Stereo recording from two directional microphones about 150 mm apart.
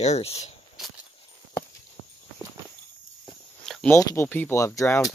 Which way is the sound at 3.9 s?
20° left (ahead or behind).